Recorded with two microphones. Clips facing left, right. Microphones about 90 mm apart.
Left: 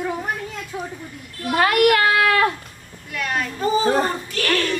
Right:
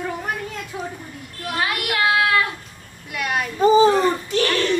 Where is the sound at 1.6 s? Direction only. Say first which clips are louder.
Left 7 dB; 55° left (ahead or behind).